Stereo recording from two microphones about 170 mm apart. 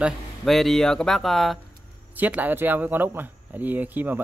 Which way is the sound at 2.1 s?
10° right (ahead or behind).